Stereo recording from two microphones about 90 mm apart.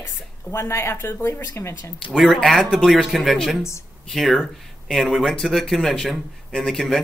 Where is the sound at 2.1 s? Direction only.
Centre (ahead or behind).